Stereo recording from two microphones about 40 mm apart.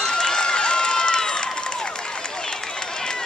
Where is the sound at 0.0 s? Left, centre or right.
Centre.